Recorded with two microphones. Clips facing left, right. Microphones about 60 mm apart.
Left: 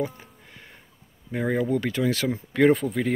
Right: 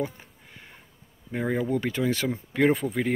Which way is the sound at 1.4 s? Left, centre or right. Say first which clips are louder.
Left 2 dB; centre.